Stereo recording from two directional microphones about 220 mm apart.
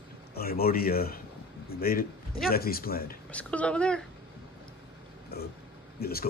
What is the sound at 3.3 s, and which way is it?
Speech, 5° left (ahead or behind).